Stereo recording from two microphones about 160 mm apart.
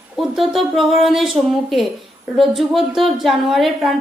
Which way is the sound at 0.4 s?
Centre (ahead or behind).